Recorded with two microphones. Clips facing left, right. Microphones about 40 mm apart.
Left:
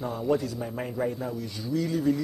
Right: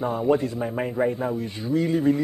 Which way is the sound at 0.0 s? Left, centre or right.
Right.